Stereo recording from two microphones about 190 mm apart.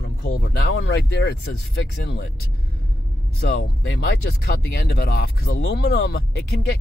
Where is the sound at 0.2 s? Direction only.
60° left (ahead or behind).